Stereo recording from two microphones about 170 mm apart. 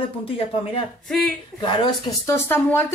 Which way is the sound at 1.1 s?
5° left (ahead or behind).